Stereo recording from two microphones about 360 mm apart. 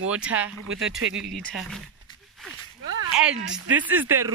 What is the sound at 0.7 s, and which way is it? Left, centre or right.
Speech, right.